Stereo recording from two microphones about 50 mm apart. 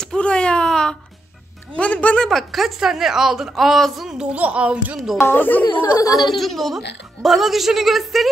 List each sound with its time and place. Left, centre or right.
0.0 s a sound: centre
1.8 s speech: left
2.2 s speech: centre
3.5 s a woman's voice: centre
4.1 s speech: centre
4.4 s speech: right
5.2 s a child's voice: left
6.1 s a woman's voice: centre